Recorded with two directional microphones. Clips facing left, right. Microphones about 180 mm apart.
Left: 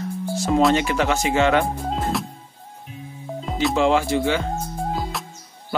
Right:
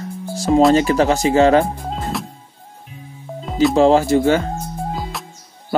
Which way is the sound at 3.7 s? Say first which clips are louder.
Right 6 dB; 35° right (ahead or behind).